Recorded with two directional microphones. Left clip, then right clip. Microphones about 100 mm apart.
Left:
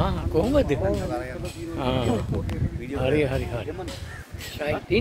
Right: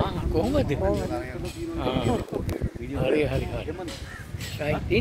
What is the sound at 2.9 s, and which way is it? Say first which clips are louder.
Speech: left 1 dB; 35° left (ahead or behind).